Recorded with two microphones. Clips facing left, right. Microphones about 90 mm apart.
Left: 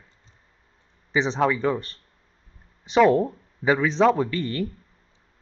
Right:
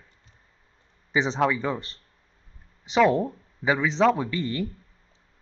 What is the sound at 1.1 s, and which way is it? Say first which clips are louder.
Speech: left 1 dB; 10° right (ahead or behind).